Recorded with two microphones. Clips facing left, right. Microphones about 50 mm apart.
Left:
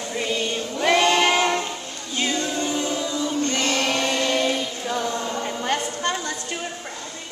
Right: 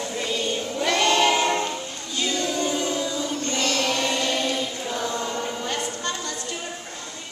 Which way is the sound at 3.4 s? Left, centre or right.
Left.